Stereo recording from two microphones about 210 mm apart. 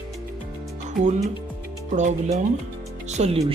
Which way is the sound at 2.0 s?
35° right (ahead or behind).